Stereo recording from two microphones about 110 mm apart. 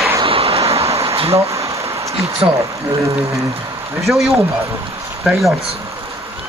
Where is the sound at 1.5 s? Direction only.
30° right (ahead or behind).